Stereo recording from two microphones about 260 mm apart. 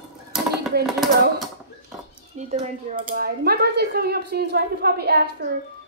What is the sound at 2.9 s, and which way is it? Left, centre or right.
A woman's voice, right.